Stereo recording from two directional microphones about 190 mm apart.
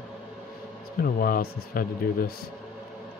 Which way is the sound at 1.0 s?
50° left (ahead or behind).